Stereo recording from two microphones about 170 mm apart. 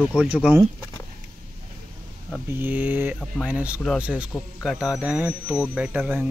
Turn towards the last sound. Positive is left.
turn(degrees=-5)  # may be behind; listen again after turning